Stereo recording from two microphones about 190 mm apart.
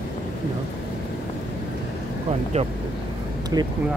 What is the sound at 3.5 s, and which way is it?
Speech, 20° right (ahead or behind).